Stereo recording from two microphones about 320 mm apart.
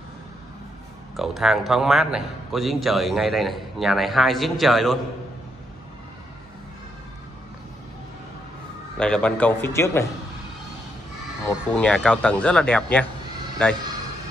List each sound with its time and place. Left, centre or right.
1.1 s a man's voice: centre
8.9 s a man's voice: centre
11.4 s a man's voice: centre